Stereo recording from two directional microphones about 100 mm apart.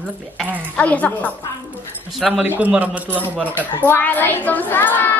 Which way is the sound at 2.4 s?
15° right (ahead or behind).